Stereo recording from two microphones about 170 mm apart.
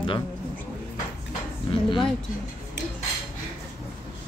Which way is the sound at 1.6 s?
30° left (ahead or behind).